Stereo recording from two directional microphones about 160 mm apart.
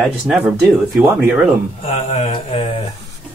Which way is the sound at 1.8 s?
40° left (ahead or behind).